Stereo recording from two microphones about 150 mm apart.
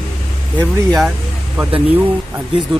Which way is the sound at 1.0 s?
10° right (ahead or behind).